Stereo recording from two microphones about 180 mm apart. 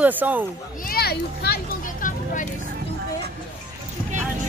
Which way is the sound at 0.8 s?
55° left (ahead or behind).